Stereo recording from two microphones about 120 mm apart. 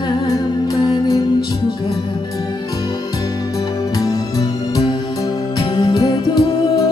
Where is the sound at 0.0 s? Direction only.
35° left (ahead or behind).